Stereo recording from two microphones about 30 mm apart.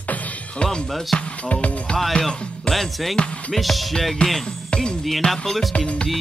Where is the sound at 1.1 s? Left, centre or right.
Left.